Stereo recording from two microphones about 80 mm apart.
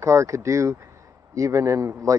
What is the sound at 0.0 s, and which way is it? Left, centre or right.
Speech, right.